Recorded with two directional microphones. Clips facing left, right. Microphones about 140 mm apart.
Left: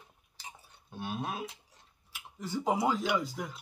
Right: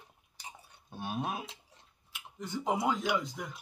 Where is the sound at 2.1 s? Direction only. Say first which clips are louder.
Left 2 dB; centre (ahead or behind).